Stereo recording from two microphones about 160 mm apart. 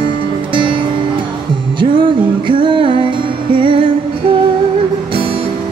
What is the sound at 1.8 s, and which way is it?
Music, 30° right (ahead or behind).